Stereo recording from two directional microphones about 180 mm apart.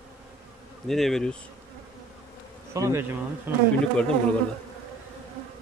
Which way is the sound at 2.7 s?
15° right (ahead or behind).